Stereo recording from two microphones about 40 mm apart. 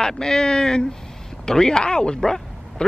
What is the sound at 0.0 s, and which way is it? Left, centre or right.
Speech, centre.